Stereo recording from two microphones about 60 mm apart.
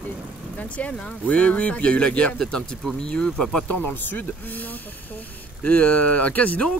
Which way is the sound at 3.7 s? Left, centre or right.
Left.